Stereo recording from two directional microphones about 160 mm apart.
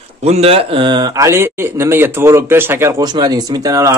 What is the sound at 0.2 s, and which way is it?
Speech, 40° right (ahead or behind).